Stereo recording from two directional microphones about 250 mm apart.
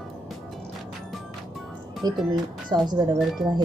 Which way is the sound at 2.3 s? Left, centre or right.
Centre.